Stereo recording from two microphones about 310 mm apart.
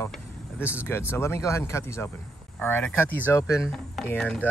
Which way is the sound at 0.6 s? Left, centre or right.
Centre.